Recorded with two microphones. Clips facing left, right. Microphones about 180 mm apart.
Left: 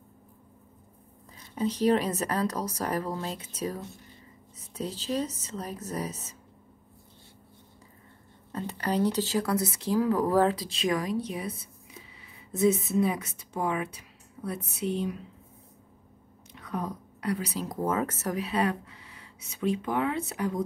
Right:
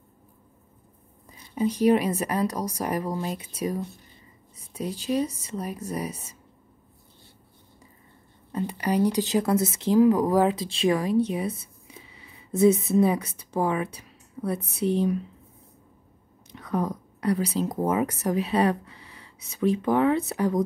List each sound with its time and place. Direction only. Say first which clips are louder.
1.5 s a woman's voice: right 4 dB; 10° right (ahead or behind)
8.5 s a woman's voice: right 4 dB; 10° right (ahead or behind)
10.6 s a woman's voice: right 5 dB; 30° right (ahead or behind)
14.4 s a sound: right 6 dB; 50° right (ahead or behind)
16.7 s speech: right 6 dB; 40° right (ahead or behind); by 18.3 s 15° right (ahead or behind)
18.3 s a woman's voice: right 5 dB; 30° right (ahead or behind)